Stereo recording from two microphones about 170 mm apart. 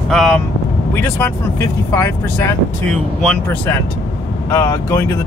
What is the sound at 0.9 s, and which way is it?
Speech, 15° left (ahead or behind).